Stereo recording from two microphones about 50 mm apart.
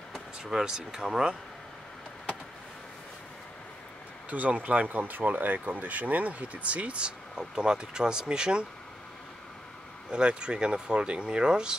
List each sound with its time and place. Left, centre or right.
0.4 s speech: centre
4.3 s speech: right
10.1 s speech: centre